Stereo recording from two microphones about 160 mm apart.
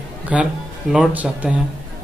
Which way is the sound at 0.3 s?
5° right (ahead or behind).